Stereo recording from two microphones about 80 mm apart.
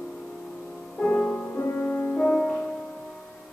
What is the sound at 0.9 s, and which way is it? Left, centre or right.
Music, centre.